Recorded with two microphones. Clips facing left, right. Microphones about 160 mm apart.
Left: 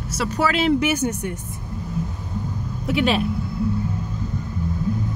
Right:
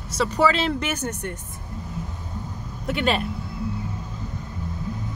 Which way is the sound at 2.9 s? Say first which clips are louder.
Left 3 dB; 5° left (ahead or behind).